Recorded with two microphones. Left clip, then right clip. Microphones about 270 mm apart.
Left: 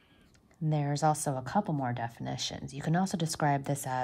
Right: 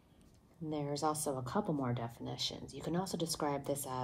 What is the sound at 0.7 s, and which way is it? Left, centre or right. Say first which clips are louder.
Speech: left 7 dB; left.